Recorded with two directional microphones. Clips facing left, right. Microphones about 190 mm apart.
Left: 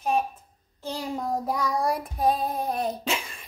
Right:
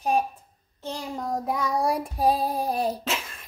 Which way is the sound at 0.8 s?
5° left (ahead or behind).